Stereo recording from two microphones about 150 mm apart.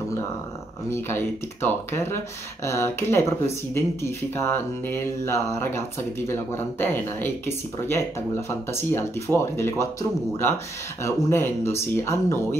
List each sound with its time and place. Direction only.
0.8 s speech: 15° left (ahead or behind)
11.0 s speech: 20° left (ahead or behind)